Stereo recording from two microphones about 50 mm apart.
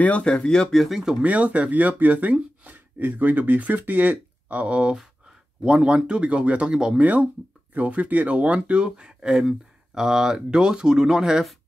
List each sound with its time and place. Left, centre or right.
0.2 s speech: centre
1.2 s speech: right
5.6 s speech: centre